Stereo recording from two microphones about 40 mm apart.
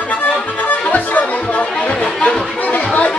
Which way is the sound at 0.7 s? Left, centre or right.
Left.